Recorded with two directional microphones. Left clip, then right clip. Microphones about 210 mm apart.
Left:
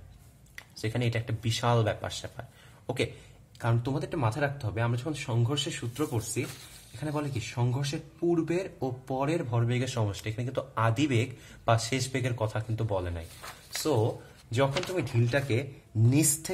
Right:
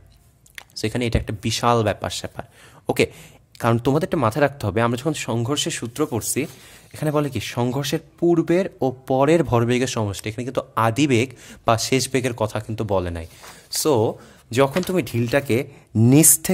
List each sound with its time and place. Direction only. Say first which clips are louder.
0.6 s speech: right 9 dB; 40° right (ahead or behind)
3.5 s speech: right 13 dB; 50° right (ahead or behind)